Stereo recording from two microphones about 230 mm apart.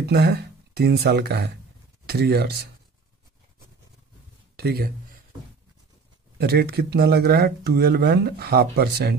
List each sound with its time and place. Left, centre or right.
0.0 s speech: right
4.6 s speech: right
6.3 s speech: right